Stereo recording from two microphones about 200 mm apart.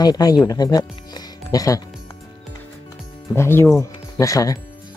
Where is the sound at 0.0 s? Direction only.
20° left (ahead or behind).